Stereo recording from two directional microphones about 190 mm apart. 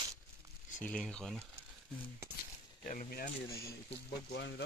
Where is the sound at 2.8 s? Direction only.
45° left (ahead or behind).